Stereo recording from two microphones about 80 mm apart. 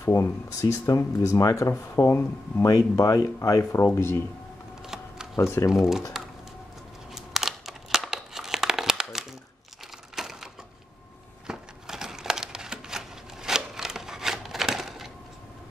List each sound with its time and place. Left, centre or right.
0.0 s speech: left
2.6 s speech: left
3.8 s speech: left
4.8 s typing: centre
5.4 s speech: left
5.7 s speech: centre
7.1 s crumpling: centre
10.1 s crushing: centre
11.4 s a sound: centre